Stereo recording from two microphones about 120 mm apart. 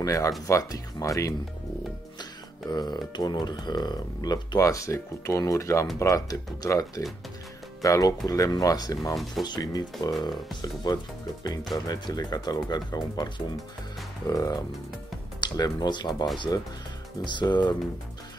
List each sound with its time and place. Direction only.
0.0 s speech: 30° left (ahead or behind)
2.7 s speech: 35° left (ahead or behind)